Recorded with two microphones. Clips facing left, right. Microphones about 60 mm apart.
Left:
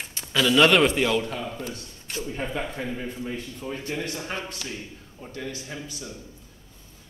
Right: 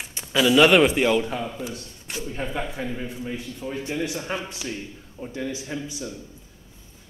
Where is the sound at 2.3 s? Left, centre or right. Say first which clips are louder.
Right 1 dB; centre.